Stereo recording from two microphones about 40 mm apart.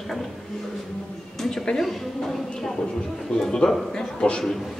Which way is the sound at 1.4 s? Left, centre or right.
Centre.